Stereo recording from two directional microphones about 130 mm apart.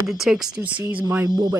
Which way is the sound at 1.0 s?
25° right (ahead or behind).